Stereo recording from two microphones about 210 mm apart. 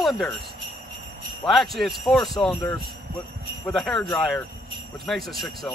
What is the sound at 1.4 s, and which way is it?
Jingle bell, centre (ahead or behind).